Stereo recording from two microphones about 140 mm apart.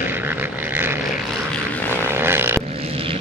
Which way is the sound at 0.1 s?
15° right (ahead or behind).